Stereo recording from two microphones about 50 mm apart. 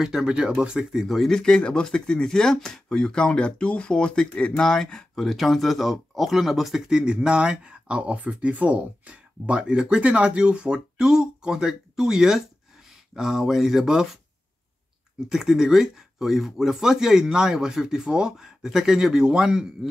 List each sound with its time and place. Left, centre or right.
0.0 s speech: centre
1.0 s speech: centre
6.9 s speech: centre
15.2 s speech: centre